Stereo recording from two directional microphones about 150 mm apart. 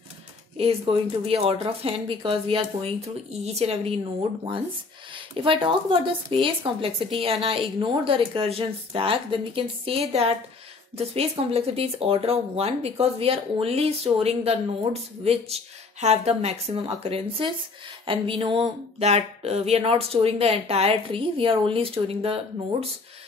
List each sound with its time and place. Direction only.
0.6 s speech: 40° right (ahead or behind)
5.1 s speech: 35° right (ahead or behind)
18.9 s speech: 45° right (ahead or behind)